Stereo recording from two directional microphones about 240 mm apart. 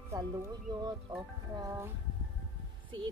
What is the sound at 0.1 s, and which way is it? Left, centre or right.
Speech, centre.